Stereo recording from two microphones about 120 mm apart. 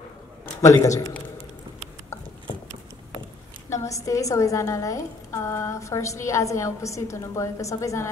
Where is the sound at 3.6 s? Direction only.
25° left (ahead or behind).